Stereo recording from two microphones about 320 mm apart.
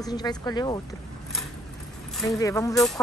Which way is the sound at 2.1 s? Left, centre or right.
Centre.